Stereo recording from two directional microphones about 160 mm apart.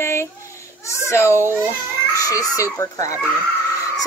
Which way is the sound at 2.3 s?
20° left (ahead or behind).